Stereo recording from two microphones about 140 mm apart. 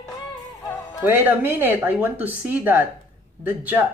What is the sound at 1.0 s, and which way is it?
Speech, 15° right (ahead or behind).